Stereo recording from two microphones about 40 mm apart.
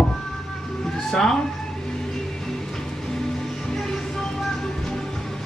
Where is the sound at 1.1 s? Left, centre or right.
Centre.